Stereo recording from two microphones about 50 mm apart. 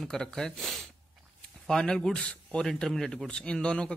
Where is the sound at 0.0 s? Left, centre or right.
Centre.